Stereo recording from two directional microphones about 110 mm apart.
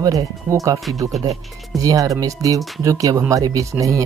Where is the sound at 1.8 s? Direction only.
30° right (ahead or behind).